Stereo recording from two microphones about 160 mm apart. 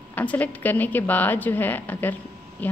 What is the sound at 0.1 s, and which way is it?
A woman's voice, 10° left (ahead or behind).